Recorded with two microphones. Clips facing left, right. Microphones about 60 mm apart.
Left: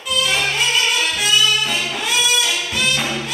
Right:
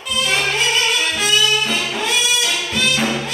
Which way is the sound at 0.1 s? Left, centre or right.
Centre.